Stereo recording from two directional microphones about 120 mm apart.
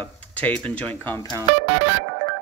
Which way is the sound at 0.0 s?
10° left (ahead or behind).